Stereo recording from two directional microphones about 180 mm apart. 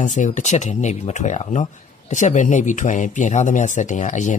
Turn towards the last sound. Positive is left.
turn(degrees=40)  # may be behind; listen again after turning